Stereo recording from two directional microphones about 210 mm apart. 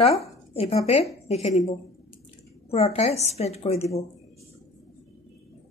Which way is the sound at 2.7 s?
30° left (ahead or behind).